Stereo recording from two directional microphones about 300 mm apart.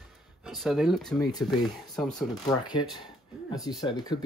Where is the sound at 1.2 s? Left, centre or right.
Centre.